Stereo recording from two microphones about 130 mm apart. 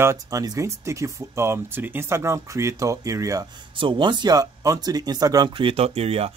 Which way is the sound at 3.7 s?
40° right (ahead or behind).